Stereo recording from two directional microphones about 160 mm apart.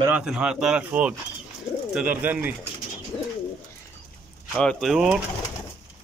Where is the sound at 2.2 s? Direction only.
10° right (ahead or behind).